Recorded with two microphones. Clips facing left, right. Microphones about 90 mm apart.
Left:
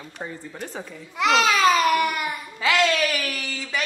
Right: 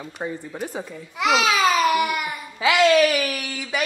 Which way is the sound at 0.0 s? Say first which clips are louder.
Right 5 dB; 15° right (ahead or behind).